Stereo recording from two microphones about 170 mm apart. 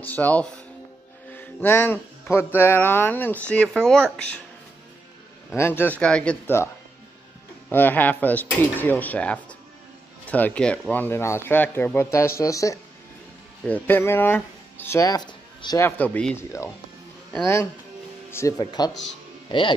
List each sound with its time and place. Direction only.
0.0 s speech: 10° left (ahead or behind)
5.6 s speech: 10° left (ahead or behind)
7.7 s speech: 10° left (ahead or behind)
15.8 s speech: 10° left (ahead or behind)
18.3 s speech: 20° left (ahead or behind)